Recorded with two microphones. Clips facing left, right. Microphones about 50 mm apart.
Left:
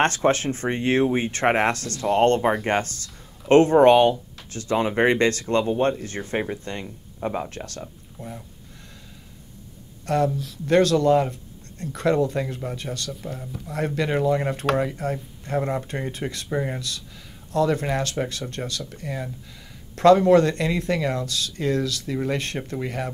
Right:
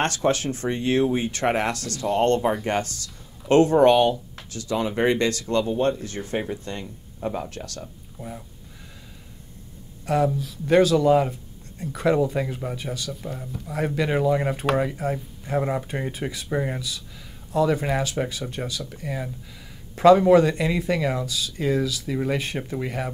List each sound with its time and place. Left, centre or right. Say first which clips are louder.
0.0 s speech: left 2 dB; left
8.2 s speech: even; centre
10.0 s speech: even; centre